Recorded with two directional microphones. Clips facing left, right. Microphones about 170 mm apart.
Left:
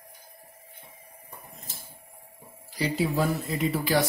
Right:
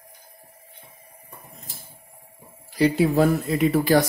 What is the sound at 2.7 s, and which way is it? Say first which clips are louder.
Speech: right 8 dB; 60° right (ahead or behind).